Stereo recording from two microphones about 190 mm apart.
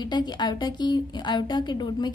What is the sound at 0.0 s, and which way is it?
A woman's voice, 20° left (ahead or behind).